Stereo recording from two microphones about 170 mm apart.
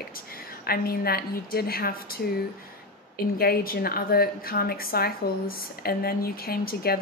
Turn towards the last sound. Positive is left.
turn(degrees=60)  # may be behind; listen again after turning